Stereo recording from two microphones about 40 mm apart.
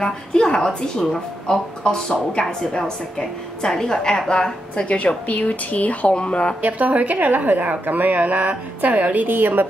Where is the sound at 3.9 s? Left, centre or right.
Centre; by 6.1 s left.